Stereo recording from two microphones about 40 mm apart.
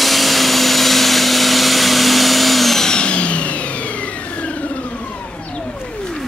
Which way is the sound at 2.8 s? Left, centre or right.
Left.